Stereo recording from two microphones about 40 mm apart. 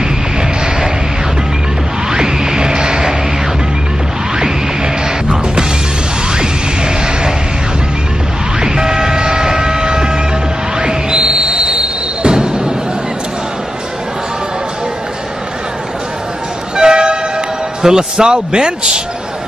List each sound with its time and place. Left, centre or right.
2.0 s music: centre
5.0 s music: centre
8.5 s vehicle: centre
10.8 s music: centre
16.7 s vehicle: right
17.8 s a man's voice: centre